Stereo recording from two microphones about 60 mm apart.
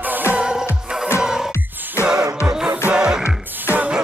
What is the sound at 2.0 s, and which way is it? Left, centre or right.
Music, left.